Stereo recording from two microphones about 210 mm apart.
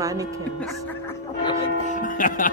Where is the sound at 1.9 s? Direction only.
40° left (ahead or behind).